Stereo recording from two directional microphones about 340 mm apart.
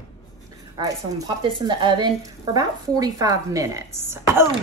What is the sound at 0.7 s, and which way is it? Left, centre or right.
A woman's voice, centre.